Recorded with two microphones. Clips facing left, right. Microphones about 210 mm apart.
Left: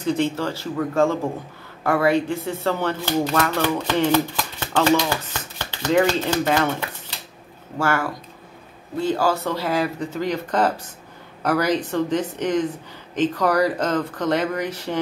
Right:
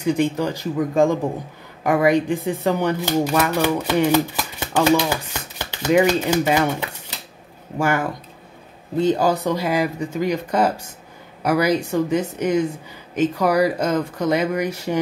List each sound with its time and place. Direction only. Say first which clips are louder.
0.0 s speech: right 2 dB; 15° right (ahead or behind)